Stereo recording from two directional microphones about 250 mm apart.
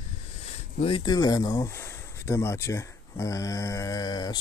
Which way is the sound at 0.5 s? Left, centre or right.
Left.